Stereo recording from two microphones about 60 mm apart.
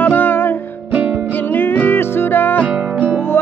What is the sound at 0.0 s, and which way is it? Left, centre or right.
Music, left.